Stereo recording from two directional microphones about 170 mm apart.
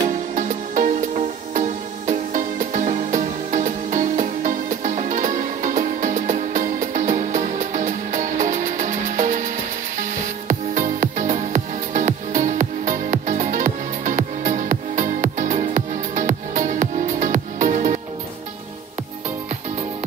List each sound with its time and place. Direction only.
0.3 s music: 50° right (ahead or behind)